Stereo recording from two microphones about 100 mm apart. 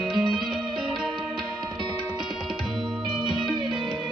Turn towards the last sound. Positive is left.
turn(degrees=-5)  # may be behind; listen again after turning